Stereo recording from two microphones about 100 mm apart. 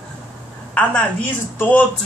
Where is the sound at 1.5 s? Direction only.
15° left (ahead or behind).